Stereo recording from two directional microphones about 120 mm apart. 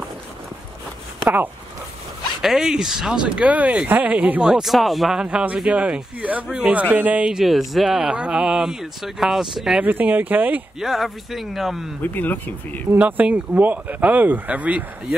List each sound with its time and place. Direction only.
2.4 s speech: 5° right (ahead or behind)
9.8 s speech: 15° right (ahead or behind)
10.8 s speech: centre (ahead or behind)
12.0 s speech: 15° left (ahead or behind)
12.9 s speech: 10° right (ahead or behind)